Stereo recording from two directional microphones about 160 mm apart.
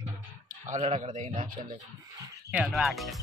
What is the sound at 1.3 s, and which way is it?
Speech, 60° right (ahead or behind).